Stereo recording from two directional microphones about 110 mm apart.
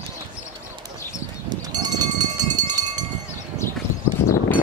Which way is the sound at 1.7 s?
35° right (ahead or behind).